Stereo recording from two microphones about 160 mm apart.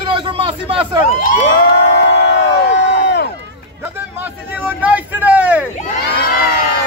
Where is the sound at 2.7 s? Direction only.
90° left.